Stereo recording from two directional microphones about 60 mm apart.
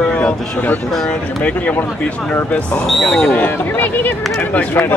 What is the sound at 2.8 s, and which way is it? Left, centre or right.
Speech, centre.